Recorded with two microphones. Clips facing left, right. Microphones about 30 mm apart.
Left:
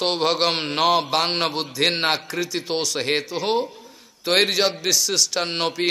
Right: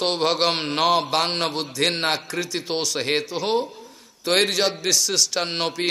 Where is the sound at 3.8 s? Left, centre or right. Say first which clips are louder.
Right 1 dB; centre.